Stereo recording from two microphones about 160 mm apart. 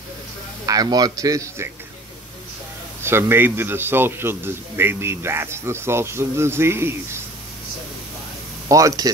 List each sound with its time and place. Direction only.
0.7 s speech: 25° right (ahead or behind)
3.0 s a man's voice: 15° right (ahead or behind)
8.6 s speech: 20° right (ahead or behind)